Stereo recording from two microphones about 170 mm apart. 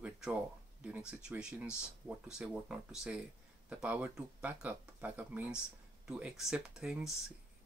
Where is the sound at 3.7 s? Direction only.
10° right (ahead or behind).